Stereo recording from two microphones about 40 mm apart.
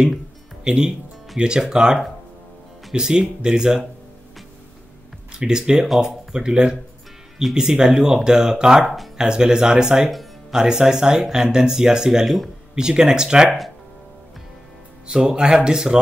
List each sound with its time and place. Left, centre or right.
0.7 s speech: centre
5.5 s speech: centre
15.0 s speech: centre